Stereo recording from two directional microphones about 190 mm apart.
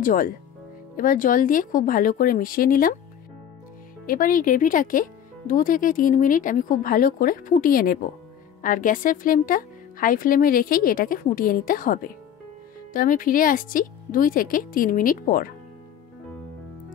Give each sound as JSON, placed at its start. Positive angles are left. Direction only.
{"t": 0.0, "sound": "speech", "side_deg": 45}
{"t": 4.0, "sound": "speech", "side_deg": 45}